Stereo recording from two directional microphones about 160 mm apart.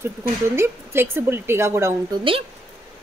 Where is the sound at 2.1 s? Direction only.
35° right (ahead or behind).